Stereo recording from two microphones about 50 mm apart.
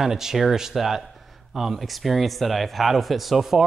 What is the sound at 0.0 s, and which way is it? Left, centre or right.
Speech, centre.